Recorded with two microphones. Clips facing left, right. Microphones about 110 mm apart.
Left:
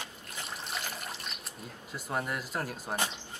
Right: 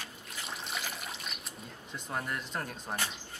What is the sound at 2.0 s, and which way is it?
Speech, 5° left (ahead or behind).